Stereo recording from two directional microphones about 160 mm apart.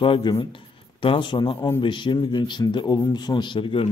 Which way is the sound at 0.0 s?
30° left (ahead or behind).